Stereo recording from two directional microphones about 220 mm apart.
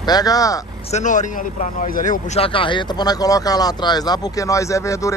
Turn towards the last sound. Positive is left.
turn(degrees=15)  # may be behind; listen again after turning